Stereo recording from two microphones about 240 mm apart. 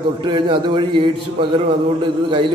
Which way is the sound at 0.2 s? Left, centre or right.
Centre.